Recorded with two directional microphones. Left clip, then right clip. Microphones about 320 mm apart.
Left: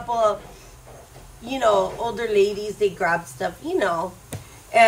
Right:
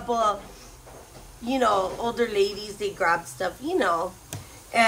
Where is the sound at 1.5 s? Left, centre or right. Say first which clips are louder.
Left 3 dB; centre.